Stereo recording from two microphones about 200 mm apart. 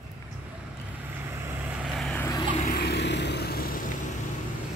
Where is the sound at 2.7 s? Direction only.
55° left (ahead or behind).